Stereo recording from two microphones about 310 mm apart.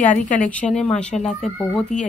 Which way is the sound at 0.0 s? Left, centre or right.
Left.